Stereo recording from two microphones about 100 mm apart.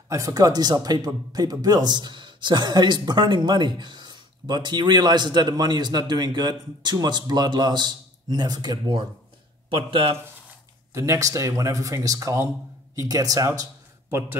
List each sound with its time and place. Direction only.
0.1 s speech: 35° right (ahead or behind); by 10.1 s 60° right (ahead or behind)
10.9 s speech: 30° right (ahead or behind)